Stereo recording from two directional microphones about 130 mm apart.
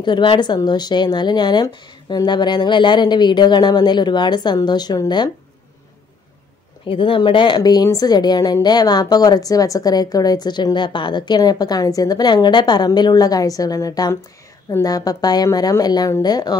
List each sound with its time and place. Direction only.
0.0 s a woman's voice: 40° left (ahead or behind)
6.9 s a woman's voice: 40° left (ahead or behind)